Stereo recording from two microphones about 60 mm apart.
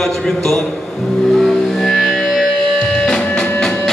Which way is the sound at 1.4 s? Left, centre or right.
Centre.